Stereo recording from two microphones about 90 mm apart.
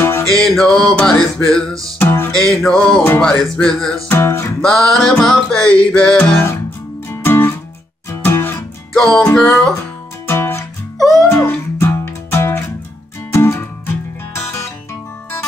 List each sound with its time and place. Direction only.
0.0 s music: 30° left (ahead or behind)
0.4 s music: 5° left (ahead or behind)
2.0 s music: 25° left (ahead or behind)
2.3 s music: 5° left (ahead or behind)
4.1 s music: 30° left (ahead or behind)
4.6 s music: 5° left (ahead or behind)
7.2 s music: 25° left (ahead or behind)
8.9 s music: 5° left (ahead or behind)
10.2 s music: 30° left (ahead or behind)